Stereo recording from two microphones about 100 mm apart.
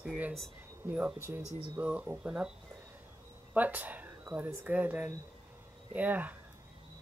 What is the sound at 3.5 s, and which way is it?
Speech, 15° right (ahead or behind).